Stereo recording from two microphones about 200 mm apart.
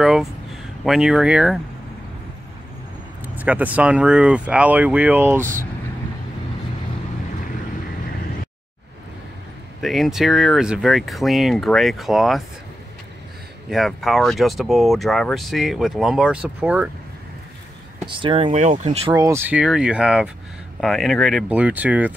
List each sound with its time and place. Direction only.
0.0 s a sound: 5° right (ahead or behind)
0.8 s speech: 5° right (ahead or behind)
3.3 s speech: 10° right (ahead or behind)
9.8 s speech: centre (ahead or behind)
13.7 s speech: centre (ahead or behind)
18.0 s speech: 25° right (ahead or behind)
18.9 s speech: 20° right (ahead or behind)